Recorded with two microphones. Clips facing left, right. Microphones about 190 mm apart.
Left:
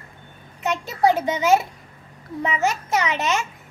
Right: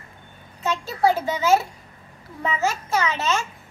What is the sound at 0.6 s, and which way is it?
A child's voice, 20° left (ahead or behind).